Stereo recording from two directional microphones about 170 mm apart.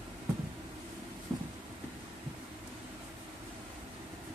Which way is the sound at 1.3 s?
15° right (ahead or behind).